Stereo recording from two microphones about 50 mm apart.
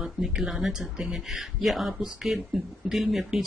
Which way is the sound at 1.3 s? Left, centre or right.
Centre.